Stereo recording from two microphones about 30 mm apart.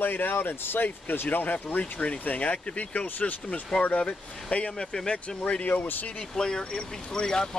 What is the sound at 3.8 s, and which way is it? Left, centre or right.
Speech, left.